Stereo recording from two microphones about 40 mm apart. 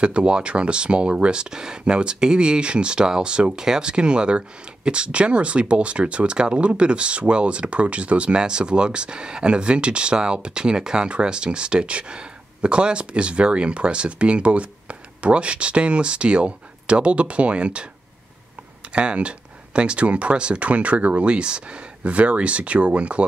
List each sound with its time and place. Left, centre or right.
0.0 s speech: right
18.9 s speech: right